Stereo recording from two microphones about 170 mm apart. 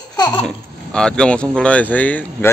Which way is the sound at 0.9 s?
5° left (ahead or behind).